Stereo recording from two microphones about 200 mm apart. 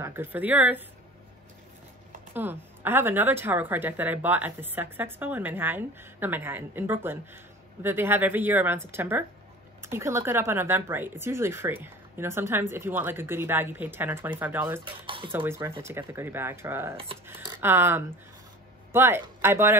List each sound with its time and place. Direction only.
0.0 s speech: 10° right (ahead or behind)
2.3 s speech: 10° right (ahead or behind)
15.0 s speech: 25° right (ahead or behind)
15.3 s speech: 10° right (ahead or behind)